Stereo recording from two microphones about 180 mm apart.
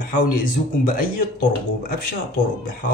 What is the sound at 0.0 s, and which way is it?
Speech, 50° left (ahead or behind).